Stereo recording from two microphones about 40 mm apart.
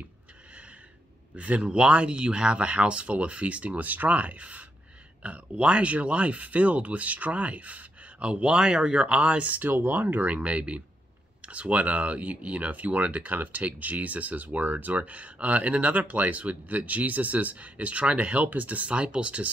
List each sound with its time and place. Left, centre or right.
1.3 s speech: right
9.0 s speech: right
9.7 s speech: right